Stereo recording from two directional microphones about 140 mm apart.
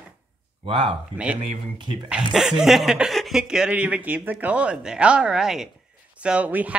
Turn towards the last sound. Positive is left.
turn(degrees=-10)  # may be behind; listen again after turning